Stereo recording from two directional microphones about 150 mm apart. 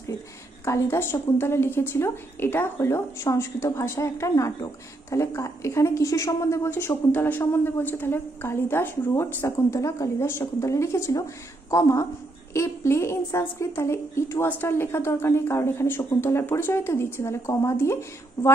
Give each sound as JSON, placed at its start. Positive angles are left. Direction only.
{"t": 0.7, "sound": "a woman's voice", "side_deg": 15}